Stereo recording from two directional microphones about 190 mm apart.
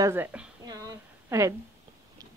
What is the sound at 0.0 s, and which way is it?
Speech, 10° right (ahead or behind).